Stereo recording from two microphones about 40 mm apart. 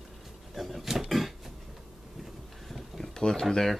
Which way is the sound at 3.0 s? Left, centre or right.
Centre.